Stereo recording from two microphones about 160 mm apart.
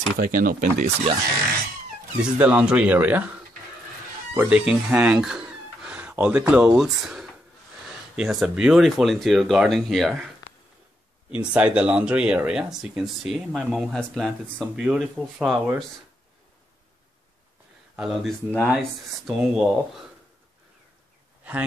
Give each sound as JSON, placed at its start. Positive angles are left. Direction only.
{"t": 0.2, "sound": "speech", "side_deg": -60}
{"t": 2.3, "sound": "speech", "side_deg": -10}
{"t": 4.3, "sound": "speech", "side_deg": -5}
{"t": 17.9, "sound": "speech", "side_deg": 0}